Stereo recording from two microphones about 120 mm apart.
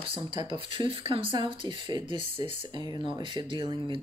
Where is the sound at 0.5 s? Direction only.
45° right (ahead or behind).